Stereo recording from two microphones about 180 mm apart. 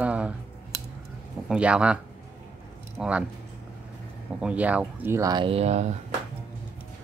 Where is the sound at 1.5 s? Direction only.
5° right (ahead or behind).